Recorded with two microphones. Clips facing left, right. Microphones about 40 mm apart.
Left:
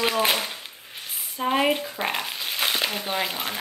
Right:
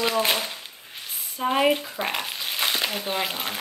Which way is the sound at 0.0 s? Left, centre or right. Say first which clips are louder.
Even; centre.